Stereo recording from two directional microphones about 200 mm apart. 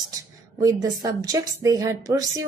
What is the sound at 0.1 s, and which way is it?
A woman's voice, 15° right (ahead or behind).